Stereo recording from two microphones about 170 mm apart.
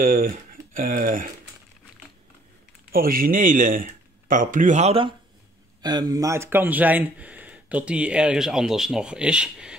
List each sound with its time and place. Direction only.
0.0 s speech: 55° right (ahead or behind)
2.9 s speech: 55° right (ahead or behind); by 5.1 s 35° right (ahead or behind)
5.8 s speech: 25° right (ahead or behind); by 9.8 s 5° right (ahead or behind)